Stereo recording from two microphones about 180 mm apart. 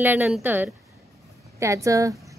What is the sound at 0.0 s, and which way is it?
A woman's voice, 10° right (ahead or behind).